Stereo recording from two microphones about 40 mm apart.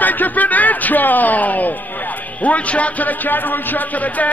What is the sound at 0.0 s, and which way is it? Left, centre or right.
Speech, left.